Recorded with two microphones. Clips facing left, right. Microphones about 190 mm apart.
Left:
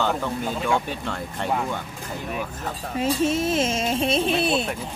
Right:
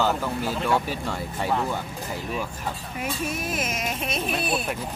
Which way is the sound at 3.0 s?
25° left (ahead or behind).